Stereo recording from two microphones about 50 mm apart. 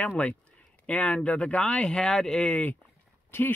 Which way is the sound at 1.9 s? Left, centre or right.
Centre.